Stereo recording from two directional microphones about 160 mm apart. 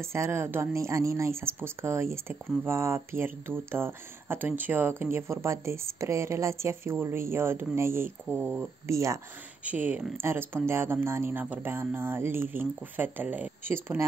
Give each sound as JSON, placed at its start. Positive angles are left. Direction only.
{"t": 0.0, "sound": "speech", "side_deg": -15}